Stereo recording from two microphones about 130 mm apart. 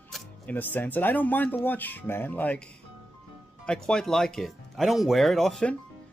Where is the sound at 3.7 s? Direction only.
5° left (ahead or behind).